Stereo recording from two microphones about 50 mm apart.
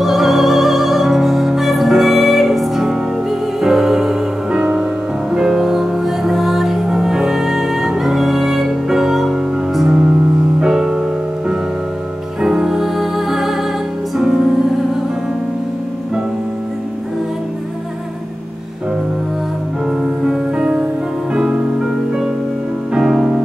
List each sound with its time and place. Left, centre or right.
0.0 s music: centre
9.8 s music: centre
20.5 s music: right